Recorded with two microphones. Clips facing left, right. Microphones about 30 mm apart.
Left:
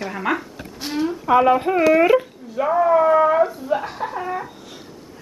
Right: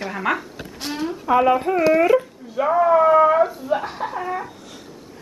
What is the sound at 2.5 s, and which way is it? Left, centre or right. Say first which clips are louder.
Speech: even; centre.